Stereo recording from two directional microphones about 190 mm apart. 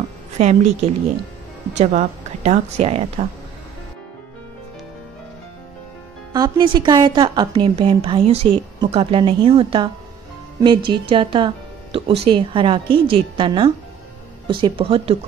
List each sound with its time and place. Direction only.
0.4 s a woman's voice: 35° right (ahead or behind)
6.3 s a woman's voice: 25° right (ahead or behind)